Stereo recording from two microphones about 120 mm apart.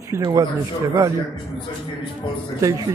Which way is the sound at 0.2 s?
30° right (ahead or behind).